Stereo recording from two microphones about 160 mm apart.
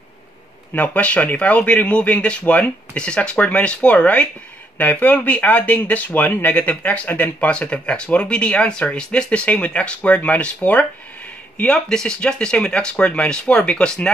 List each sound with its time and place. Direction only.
0.7 s speech: 10° left (ahead or behind)